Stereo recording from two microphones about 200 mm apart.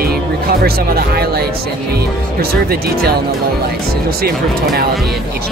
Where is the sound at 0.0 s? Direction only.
50° right (ahead or behind).